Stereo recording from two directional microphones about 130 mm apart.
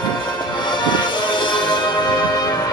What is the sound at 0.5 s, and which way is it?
Music, 35° left (ahead or behind).